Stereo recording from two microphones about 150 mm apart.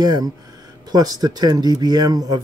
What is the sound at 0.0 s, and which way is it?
Speech, 25° right (ahead or behind).